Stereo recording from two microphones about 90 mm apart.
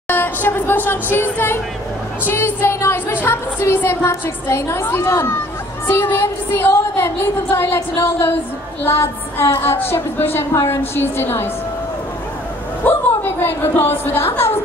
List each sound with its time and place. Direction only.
0.1 s a woman's voice: 25° left (ahead or behind)
12.8 s a woman's voice: 20° left (ahead or behind)